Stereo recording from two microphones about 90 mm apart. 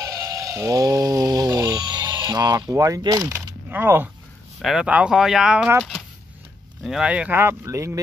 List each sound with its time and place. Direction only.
0.0 s fowl: 40° right (ahead or behind)
2.2 s speech: 40° right (ahead or behind)
3.0 s speech: 50° right (ahead or behind)
3.7 s speech: 20° right (ahead or behind)
4.6 s speech: centre (ahead or behind)
4.8 s speech: 10° right (ahead or behind)
6.8 s speech: 5° right (ahead or behind)
7.3 s speech: 30° right (ahead or behind)